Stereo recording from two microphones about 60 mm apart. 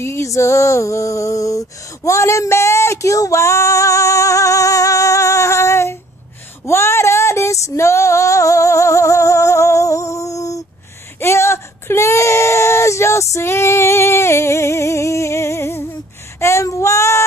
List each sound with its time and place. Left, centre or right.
0.0 s music: left
0.3 s music: left
2.0 s female singing: left
11.1 s a sound: left